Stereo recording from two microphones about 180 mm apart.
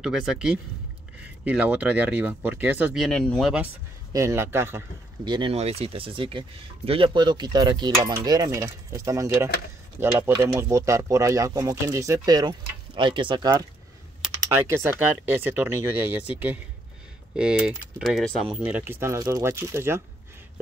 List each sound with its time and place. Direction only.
0.0 s typing: 5° right (ahead or behind)
1.4 s speech: 10° right (ahead or behind)
4.1 s speech: 15° right (ahead or behind)
5.3 s cutlery: 30° right (ahead or behind)
9.9 s speech: 10° right (ahead or behind)
14.5 s speech: 15° right (ahead or behind)
17.4 s typing: 5° right (ahead or behind)
18.6 s speech: 10° right (ahead or behind)